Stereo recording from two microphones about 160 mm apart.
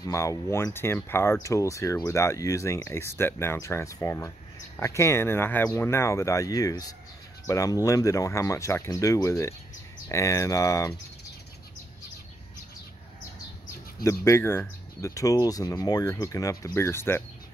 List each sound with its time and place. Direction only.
0.0 s speech: 20° left (ahead or behind)
14.0 s speech: 15° left (ahead or behind)